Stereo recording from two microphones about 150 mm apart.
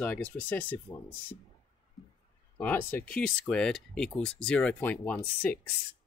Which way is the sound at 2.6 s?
15° left (ahead or behind).